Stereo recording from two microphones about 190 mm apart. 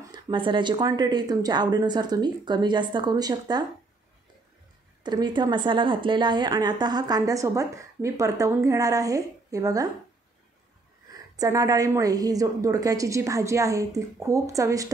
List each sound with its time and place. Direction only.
0.0 s speech: 25° right (ahead or behind)
5.0 s speech: 25° right (ahead or behind)
11.3 s a woman's voice: 15° right (ahead or behind)